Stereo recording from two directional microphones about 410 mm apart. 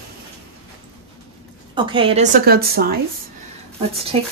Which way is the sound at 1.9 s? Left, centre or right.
Centre.